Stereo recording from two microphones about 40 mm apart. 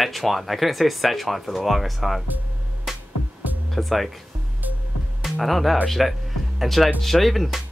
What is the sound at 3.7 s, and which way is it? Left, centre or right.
Speech, centre.